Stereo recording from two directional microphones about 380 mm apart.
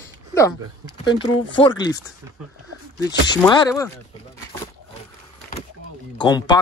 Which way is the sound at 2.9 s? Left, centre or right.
Centre.